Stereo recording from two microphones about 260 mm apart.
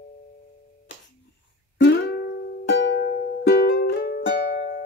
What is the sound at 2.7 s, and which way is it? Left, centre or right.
Music, left.